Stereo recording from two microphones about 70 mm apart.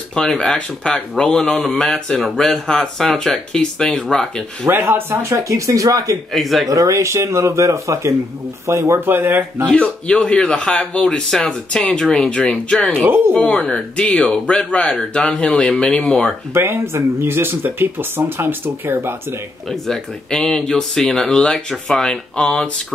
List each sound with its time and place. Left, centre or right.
0.4 s speech: centre
4.6 s speech: right
6.3 s speech: centre
6.7 s speech: right
9.7 s speech: centre
16.5 s speech: right
19.7 s speech: centre